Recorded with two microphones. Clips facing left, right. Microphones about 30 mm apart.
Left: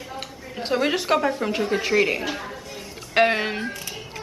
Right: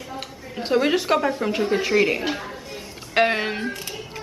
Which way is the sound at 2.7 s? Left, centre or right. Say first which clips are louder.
Left 1 dB; centre.